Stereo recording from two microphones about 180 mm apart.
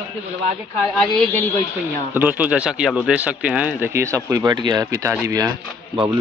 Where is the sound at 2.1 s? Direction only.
10° right (ahead or behind).